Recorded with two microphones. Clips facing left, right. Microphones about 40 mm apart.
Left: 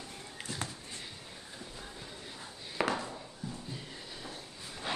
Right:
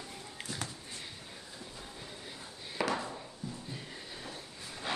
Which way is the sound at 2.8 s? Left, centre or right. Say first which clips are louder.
Left 1 dB; left.